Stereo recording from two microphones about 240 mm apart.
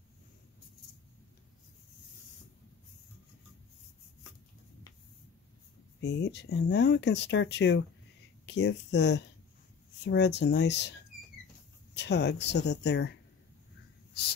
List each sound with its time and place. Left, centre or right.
5.9 s speech: left
12.0 s speech: left